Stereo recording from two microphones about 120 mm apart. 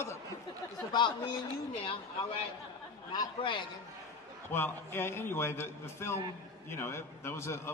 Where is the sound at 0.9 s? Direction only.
40° left (ahead or behind).